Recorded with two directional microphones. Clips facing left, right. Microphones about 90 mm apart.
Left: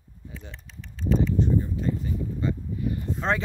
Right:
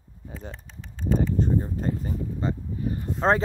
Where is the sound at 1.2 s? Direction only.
40° right (ahead or behind).